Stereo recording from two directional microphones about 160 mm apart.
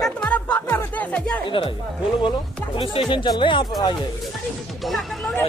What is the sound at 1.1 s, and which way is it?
Speech, 5° left (ahead or behind).